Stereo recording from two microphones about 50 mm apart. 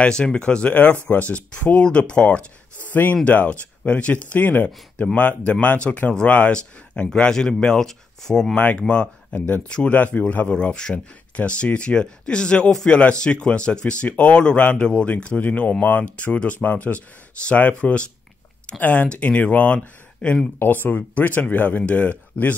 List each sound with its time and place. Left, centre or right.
0.0 s speech: centre
6.5 s speech: left
14.6 s speech: left
20.5 s speech: left